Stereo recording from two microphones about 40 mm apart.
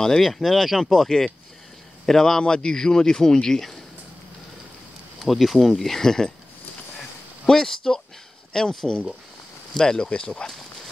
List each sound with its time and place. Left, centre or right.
0.0 s speech: centre
1.0 s speech: centre
5.2 s speech: centre
7.4 s speech: centre